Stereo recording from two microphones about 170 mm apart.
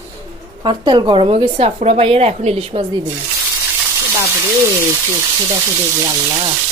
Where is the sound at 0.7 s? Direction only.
30° right (ahead or behind).